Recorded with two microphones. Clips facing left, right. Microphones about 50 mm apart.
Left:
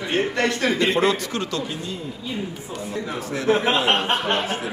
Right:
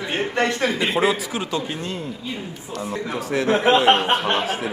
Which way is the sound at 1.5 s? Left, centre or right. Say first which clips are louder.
Right 2 dB; right.